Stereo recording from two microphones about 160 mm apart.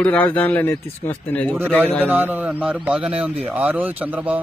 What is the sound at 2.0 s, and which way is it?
A man's voice, 10° right (ahead or behind).